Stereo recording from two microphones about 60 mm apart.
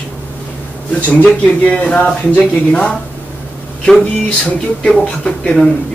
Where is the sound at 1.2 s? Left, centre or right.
Left.